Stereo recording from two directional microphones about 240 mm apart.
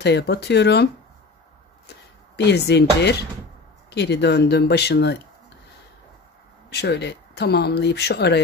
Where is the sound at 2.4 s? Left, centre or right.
Left.